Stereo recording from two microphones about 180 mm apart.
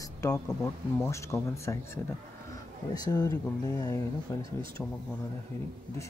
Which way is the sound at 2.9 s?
20° left (ahead or behind).